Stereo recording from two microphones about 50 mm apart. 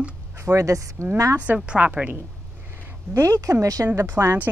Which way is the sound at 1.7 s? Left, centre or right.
Right.